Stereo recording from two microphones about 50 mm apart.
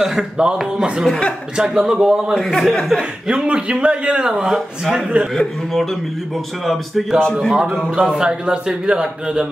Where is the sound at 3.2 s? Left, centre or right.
Centre.